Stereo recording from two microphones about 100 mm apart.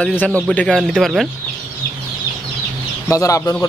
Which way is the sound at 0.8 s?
Centre (ahead or behind).